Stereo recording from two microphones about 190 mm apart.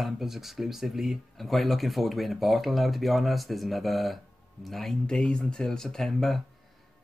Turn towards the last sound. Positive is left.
turn(degrees=0)  # may be behind; listen again after turning